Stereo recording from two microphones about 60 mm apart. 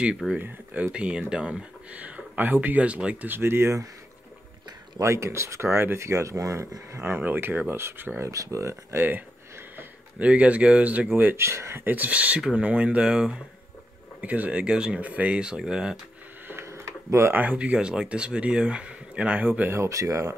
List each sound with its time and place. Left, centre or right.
0.2 s speech: centre
0.9 s speech: centre
3.3 s speech: right
4.9 s speech: right
7.0 s speech: right
8.2 s speech: right
8.9 s speech: right
10.1 s speech: right
11.3 s speech: right
11.8 s speech: right; by 16.0 s centre
16.6 s a sound: right
17.3 s speech: right
19.7 s speech: right